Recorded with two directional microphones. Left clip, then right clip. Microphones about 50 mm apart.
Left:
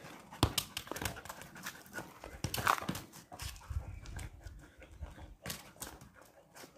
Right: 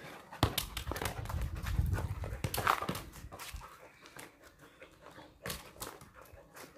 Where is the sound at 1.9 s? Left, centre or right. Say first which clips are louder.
Right 3 dB; centre.